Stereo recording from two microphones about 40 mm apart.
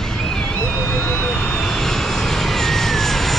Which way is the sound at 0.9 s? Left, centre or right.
Left.